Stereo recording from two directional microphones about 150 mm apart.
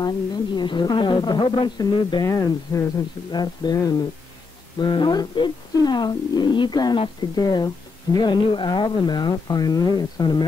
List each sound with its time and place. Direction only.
0.0 s speech: 30° left (ahead or behind)